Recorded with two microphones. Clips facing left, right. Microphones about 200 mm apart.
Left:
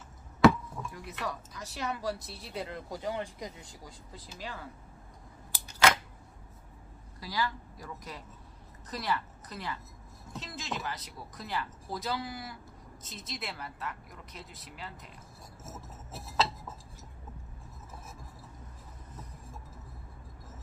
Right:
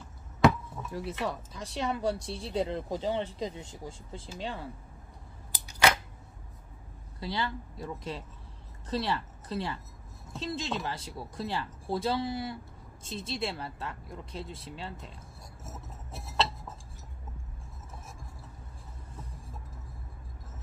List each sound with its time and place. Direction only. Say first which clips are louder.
0.9 s speech: right 7 dB; 30° right (ahead or behind)
7.2 s speech: right 1 dB; 25° right (ahead or behind)
15.6 s glass: even; centre (ahead or behind)